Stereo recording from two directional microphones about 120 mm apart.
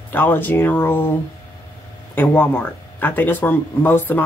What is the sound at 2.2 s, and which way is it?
Speech, 15° left (ahead or behind).